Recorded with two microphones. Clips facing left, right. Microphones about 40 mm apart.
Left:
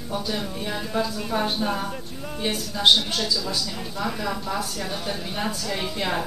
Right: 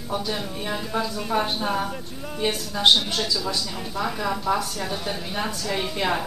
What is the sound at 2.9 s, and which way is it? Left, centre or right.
A woman's voice, centre.